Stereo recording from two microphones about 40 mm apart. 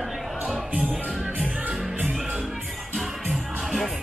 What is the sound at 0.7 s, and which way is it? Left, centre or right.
Music, right.